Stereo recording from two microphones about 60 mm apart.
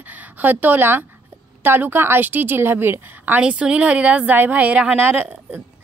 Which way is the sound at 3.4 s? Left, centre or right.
Centre.